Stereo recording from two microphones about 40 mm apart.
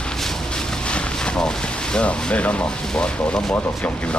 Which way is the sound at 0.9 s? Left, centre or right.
Left.